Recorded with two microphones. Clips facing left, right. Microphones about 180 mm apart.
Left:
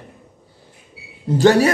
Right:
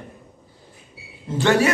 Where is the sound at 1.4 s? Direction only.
40° left (ahead or behind).